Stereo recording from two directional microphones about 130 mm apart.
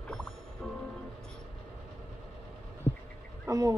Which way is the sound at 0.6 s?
5° left (ahead or behind).